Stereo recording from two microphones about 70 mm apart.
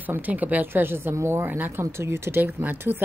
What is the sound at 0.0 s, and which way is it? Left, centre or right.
A woman's voice, right.